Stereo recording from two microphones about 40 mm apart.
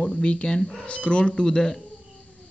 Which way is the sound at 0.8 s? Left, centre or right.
Left.